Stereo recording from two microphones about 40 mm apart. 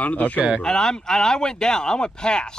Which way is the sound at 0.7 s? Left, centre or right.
Centre.